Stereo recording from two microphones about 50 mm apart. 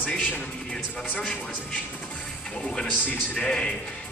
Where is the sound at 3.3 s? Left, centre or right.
Centre.